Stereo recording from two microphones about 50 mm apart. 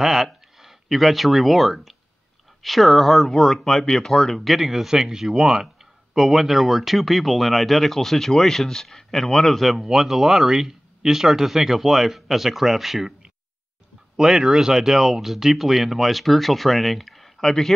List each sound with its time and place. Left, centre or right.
0.0 s speech: centre
4.6 s speech: centre